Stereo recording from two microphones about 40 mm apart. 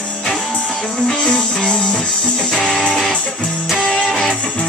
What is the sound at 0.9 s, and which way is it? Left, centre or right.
Music, left.